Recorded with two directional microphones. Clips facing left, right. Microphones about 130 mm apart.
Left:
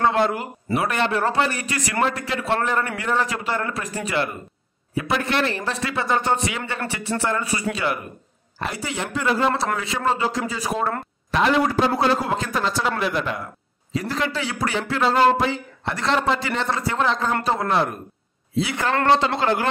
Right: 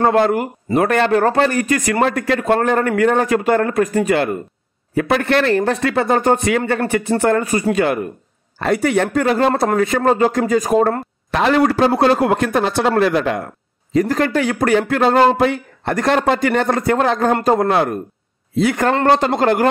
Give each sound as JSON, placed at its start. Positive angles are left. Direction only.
{"t": 0.0, "sound": "a man's voice", "side_deg": -50}
{"t": 13.9, "sound": "a man's voice", "side_deg": -50}